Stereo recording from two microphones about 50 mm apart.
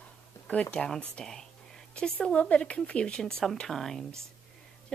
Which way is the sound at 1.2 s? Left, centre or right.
Centre.